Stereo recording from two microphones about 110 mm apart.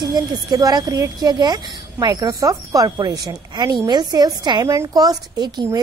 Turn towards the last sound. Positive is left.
turn(degrees=-35)  # may be behind; listen again after turning